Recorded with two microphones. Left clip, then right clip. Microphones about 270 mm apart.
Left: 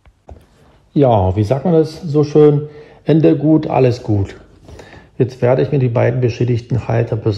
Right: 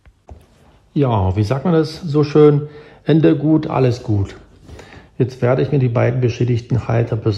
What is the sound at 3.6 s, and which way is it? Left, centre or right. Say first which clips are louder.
Speech: left 4 dB; centre.